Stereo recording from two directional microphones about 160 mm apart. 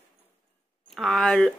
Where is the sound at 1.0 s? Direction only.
5° left (ahead or behind).